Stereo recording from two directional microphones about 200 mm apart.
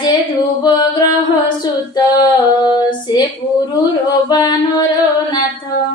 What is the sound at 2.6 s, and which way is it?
Female singing, 20° left (ahead or behind).